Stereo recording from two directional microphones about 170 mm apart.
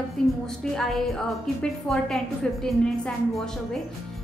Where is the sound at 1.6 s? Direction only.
5° left (ahead or behind).